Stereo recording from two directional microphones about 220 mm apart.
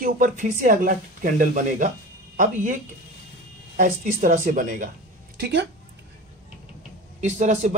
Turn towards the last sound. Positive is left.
turn(degrees=-30)  # may be behind; listen again after turning